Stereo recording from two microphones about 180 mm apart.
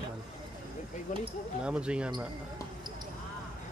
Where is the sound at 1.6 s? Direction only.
5° right (ahead or behind).